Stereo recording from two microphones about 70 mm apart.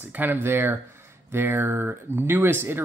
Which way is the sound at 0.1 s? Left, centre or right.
Right.